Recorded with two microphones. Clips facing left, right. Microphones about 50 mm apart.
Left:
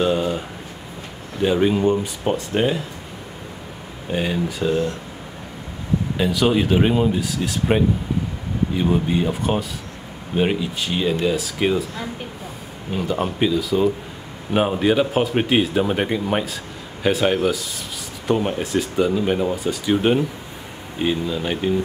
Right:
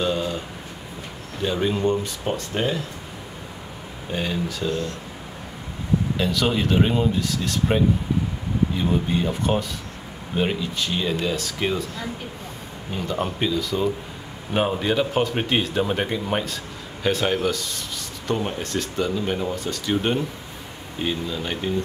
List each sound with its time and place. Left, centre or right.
0.0 s a sound: centre
1.4 s speech: centre
4.1 s speech: centre
6.1 s speech: centre
12.9 s speech: centre